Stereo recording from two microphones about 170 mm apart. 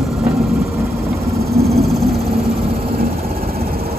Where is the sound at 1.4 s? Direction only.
65° right (ahead or behind).